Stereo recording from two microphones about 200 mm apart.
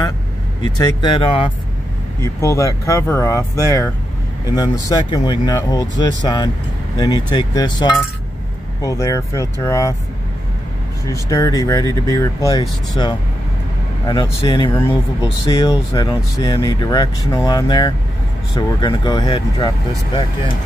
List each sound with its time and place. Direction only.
0.7 s speech: 20° left (ahead or behind)
2.2 s speech: 15° left (ahead or behind)
11.1 s speech: 15° left (ahead or behind)